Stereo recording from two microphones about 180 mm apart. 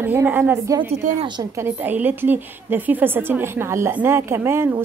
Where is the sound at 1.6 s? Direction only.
10° right (ahead or behind).